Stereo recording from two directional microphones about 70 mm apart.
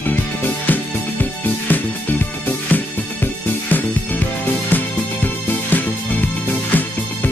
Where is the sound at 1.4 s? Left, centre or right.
Left.